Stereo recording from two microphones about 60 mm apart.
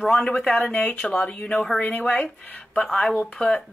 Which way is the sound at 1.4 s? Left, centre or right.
Centre.